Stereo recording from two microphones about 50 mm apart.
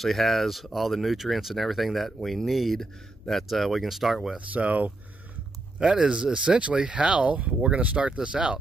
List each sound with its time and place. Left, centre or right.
0.0 s speech: centre
4.4 s speech: right
5.8 s speech: centre